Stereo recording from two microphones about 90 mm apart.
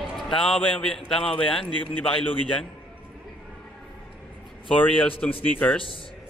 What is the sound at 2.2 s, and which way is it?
Speech, 90° left.